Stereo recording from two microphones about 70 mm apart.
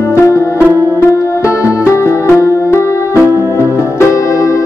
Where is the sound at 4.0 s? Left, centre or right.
Left.